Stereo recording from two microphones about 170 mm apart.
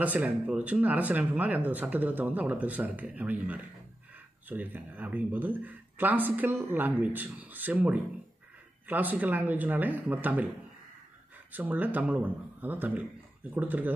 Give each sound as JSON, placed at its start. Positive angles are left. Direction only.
{"t": 0.0, "sound": "speech", "side_deg": -10}
{"t": 11.5, "sound": "speech", "side_deg": -10}